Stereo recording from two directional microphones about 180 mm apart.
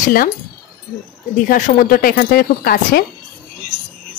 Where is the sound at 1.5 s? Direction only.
55° left (ahead or behind).